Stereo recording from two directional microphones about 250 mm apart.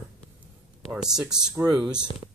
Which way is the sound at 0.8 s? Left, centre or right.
Centre.